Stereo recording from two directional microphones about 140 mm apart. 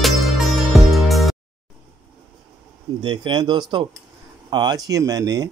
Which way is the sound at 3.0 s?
35° right (ahead or behind).